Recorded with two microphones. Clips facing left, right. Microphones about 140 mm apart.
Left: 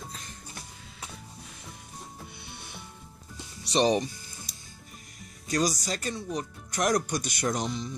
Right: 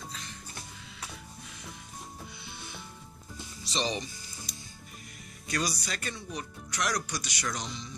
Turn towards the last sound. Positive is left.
turn(degrees=50)  # may be behind; listen again after turning